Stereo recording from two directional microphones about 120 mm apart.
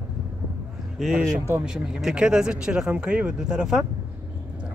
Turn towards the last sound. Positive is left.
turn(degrees=-5)  # may be behind; listen again after turning